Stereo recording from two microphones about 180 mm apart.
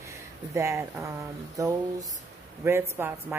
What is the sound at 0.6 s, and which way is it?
Speech, 15° right (ahead or behind).